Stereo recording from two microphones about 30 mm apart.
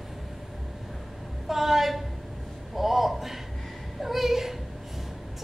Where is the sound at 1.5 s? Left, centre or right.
Centre.